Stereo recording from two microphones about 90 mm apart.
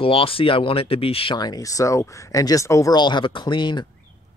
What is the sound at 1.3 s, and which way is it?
Speech, 45° left (ahead or behind).